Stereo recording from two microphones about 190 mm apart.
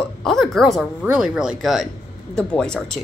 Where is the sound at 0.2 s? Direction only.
Centre (ahead or behind).